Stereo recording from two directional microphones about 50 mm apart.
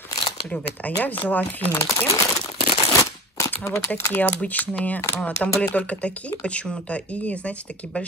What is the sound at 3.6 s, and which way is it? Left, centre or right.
Speech, left.